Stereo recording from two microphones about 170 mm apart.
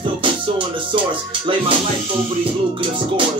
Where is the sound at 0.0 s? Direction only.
30° right (ahead or behind).